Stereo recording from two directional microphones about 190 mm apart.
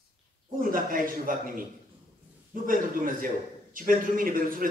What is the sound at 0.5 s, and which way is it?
A man's voice, 45° right (ahead or behind).